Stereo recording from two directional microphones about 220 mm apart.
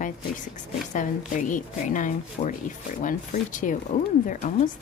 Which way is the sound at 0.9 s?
35° left (ahead or behind).